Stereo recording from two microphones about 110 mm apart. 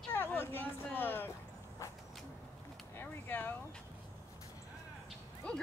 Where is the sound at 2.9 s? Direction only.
15° left (ahead or behind).